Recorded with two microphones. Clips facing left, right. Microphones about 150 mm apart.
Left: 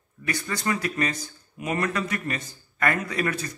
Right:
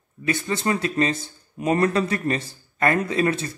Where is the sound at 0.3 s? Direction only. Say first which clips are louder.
Right 4 dB; 25° right (ahead or behind).